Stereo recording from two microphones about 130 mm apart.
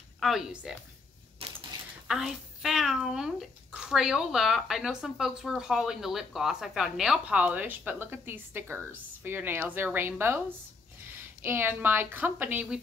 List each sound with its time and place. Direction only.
0.2 s a child's voice: 5° right (ahead or behind)
1.4 s a sound: 45° right (ahead or behind)
2.0 s a child's voice: 5° right (ahead or behind)